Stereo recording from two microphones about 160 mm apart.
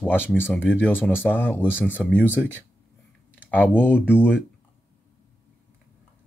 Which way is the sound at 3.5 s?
10° left (ahead or behind).